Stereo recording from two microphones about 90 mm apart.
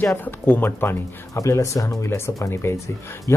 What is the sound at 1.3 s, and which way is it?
Speech, 35° left (ahead or behind).